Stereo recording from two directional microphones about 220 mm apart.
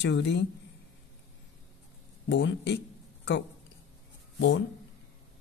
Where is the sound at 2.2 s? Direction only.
55° left (ahead or behind).